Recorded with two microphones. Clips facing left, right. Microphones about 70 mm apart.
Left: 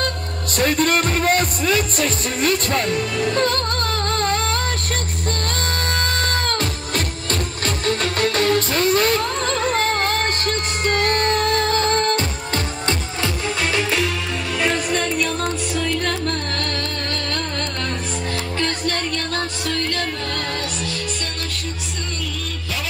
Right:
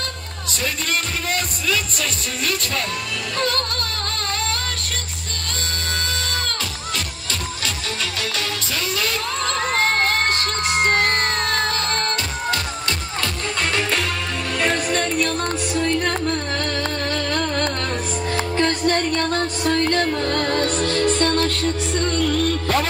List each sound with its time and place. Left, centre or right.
0.6 s speech: left
4.1 s music: left
5.9 s music: left
10.8 s music: right
11.7 s music: left
13.6 s music: centre
18.3 s music: right